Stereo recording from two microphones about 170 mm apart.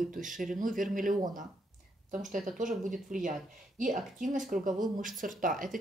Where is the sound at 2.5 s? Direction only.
50° right (ahead or behind).